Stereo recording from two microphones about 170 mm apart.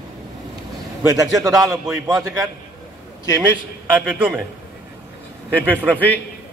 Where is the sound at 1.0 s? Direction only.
20° right (ahead or behind).